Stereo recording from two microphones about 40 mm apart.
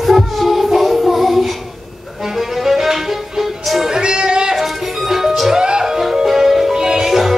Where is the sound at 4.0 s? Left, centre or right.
Right.